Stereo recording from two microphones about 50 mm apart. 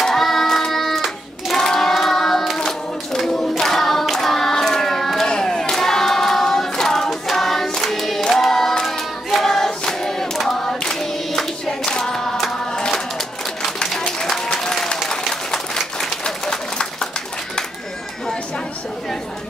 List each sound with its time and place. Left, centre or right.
0.0 s child singing: centre
1.6 s hands: centre
7.9 s choir: centre
13.8 s music: centre
14.2 s applause: centre
16.3 s a sound: centre